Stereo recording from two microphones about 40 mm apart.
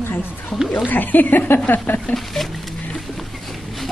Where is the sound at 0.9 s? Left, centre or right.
Left.